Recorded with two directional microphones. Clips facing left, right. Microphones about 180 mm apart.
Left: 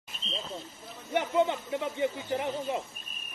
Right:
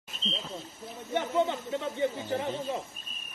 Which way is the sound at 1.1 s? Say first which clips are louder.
Left 1 dB; 15° left (ahead or behind).